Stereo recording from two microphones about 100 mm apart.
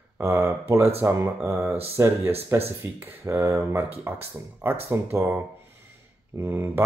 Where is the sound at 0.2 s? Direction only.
25° right (ahead or behind).